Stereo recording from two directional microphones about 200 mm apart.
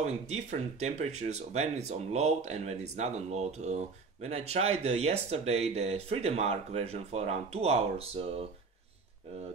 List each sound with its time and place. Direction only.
0.0 s speech: 35° right (ahead or behind)